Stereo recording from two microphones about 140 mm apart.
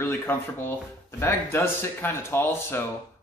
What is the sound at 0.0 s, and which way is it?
A man's voice, 15° left (ahead or behind).